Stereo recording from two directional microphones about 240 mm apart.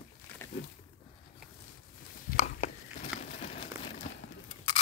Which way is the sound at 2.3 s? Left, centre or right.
Left.